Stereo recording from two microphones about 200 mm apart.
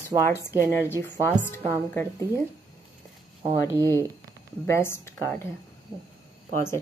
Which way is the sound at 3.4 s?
25° right (ahead or behind).